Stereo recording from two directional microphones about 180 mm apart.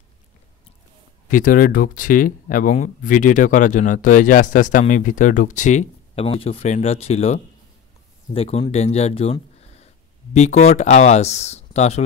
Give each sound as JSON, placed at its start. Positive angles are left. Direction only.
{"t": 1.3, "sound": "speech", "side_deg": 50}